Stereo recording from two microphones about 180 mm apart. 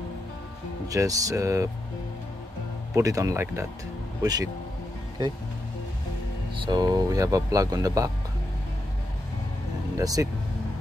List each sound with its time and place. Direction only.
0.8 s speech: 20° right (ahead or behind)
2.9 s speech: 20° right (ahead or behind)
6.6 s speech: 25° right (ahead or behind)
9.9 s speech: 20° right (ahead or behind)